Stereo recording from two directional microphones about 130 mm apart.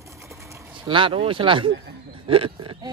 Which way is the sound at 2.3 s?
40° right (ahead or behind).